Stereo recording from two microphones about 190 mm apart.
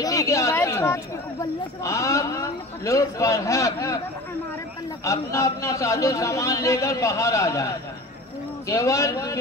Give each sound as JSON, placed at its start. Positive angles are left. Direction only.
{"t": 0.0, "sound": "speech", "side_deg": 15}
{"t": 5.0, "sound": "speech", "side_deg": 15}